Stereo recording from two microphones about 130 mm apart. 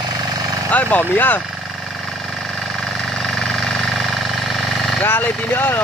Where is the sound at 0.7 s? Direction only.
10° left (ahead or behind).